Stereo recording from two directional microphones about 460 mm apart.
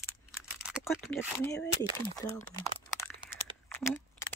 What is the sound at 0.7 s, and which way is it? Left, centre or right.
Speech, centre.